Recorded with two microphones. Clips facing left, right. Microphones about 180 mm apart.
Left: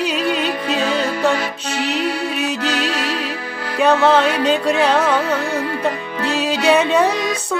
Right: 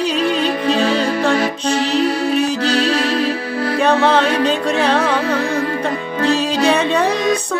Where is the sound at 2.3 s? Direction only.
5° left (ahead or behind).